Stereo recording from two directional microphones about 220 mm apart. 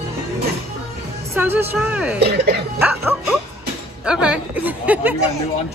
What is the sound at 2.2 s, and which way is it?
Speech, 45° right (ahead or behind).